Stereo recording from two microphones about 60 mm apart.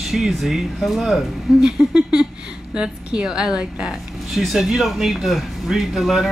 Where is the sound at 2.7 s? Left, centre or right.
Centre.